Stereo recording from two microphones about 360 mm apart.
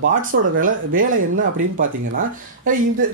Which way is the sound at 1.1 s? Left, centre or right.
Right.